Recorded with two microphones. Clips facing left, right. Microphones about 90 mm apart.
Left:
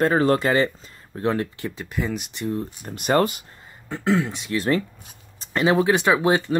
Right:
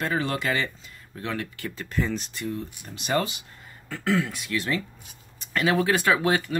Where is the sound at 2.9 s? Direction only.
50° left (ahead or behind).